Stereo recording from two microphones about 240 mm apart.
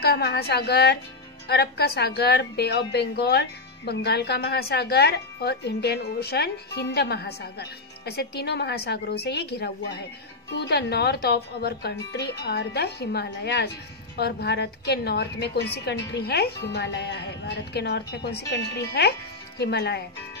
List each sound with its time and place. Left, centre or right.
0.0 s a woman's voice: left